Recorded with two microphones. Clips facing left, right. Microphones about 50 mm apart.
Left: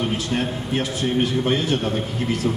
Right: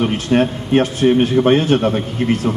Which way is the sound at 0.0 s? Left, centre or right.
Right.